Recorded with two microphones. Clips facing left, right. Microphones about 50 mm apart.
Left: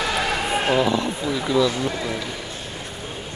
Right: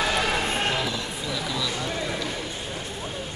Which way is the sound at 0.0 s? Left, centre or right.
Centre.